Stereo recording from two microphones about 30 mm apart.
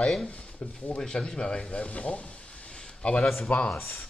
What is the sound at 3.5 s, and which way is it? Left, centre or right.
Speech, left.